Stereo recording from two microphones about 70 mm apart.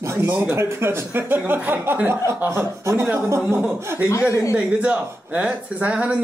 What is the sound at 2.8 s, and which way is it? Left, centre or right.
Speech, right.